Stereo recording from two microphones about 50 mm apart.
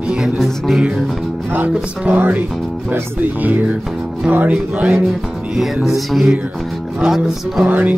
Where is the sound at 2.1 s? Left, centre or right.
Right.